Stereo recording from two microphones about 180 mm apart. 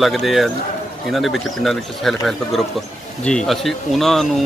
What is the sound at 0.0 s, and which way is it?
Speech, centre (ahead or behind).